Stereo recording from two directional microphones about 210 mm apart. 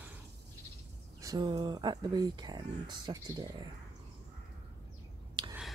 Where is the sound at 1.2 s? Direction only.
20° right (ahead or behind).